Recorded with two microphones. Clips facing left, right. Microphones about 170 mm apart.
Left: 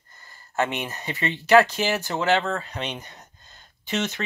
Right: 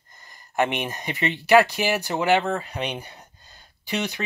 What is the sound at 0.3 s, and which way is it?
Speech, 15° right (ahead or behind).